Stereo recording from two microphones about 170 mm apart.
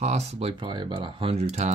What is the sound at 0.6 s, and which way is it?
Speech, 30° right (ahead or behind).